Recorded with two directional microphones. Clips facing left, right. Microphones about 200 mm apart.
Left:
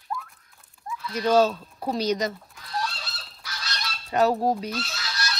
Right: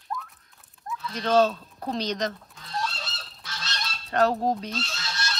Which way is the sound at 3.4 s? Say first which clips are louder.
Left 1 dB; 25° right (ahead or behind).